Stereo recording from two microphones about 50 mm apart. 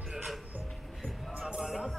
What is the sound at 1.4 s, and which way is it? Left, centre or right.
Music, centre.